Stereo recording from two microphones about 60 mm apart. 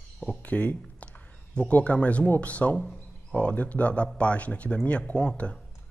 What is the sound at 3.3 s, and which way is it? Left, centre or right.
Speech, left.